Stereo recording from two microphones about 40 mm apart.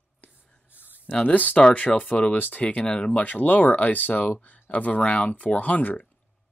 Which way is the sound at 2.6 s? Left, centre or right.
Left.